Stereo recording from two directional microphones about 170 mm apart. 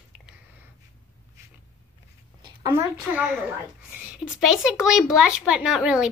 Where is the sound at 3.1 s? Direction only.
10° right (ahead or behind).